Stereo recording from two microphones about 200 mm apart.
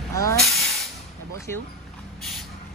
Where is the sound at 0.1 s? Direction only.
15° left (ahead or behind).